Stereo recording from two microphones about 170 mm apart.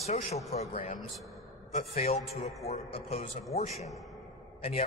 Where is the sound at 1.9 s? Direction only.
35° left (ahead or behind).